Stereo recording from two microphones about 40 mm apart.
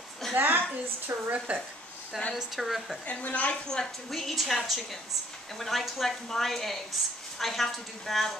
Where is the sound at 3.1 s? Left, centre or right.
Left.